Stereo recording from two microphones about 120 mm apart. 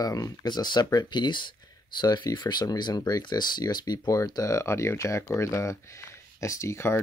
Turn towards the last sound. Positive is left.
turn(degrees=25)  # may be behind; listen again after turning